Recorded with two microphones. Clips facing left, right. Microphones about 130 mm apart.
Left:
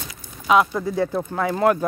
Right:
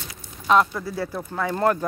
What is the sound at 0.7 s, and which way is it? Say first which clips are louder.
Speech: left 6 dB; 20° left (ahead or behind).